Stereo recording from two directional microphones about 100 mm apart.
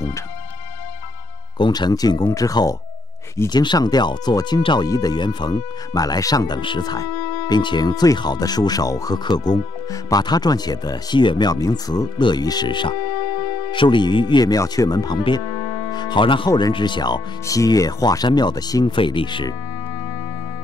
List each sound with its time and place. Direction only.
1.6 s speech: 45° left (ahead or behind)
15.9 s speech: 45° left (ahead or behind)
16.4 s speech: 40° left (ahead or behind)
16.7 s speech: 50° left (ahead or behind)
18.9 s speech: 55° left (ahead or behind)